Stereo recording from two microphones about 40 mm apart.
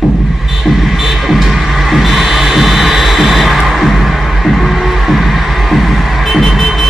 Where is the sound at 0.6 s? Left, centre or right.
Centre.